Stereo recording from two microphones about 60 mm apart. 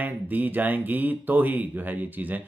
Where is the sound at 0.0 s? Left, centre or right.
Right.